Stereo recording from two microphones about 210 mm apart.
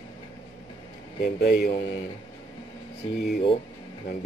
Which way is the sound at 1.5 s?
45° left (ahead or behind).